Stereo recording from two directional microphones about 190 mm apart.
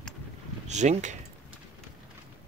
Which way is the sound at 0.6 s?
40° right (ahead or behind).